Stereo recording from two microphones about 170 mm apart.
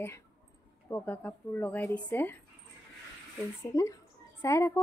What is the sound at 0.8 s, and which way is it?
Speech, 15° left (ahead or behind).